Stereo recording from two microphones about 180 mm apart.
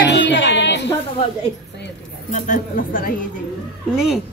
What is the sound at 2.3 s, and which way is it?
Speech, 45° left (ahead or behind).